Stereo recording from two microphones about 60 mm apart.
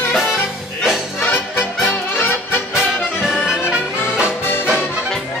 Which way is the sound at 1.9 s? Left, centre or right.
Left.